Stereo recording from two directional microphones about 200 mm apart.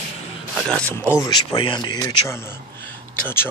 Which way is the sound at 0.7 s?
5° left (ahead or behind).